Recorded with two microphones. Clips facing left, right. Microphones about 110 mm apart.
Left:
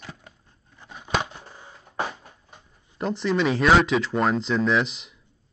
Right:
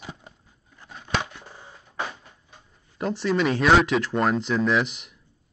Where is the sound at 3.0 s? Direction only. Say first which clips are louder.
Even; centre (ahead or behind).